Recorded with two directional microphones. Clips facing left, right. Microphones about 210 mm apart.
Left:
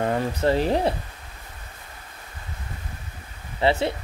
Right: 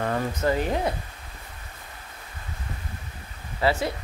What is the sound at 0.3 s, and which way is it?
Speech, 35° left (ahead or behind).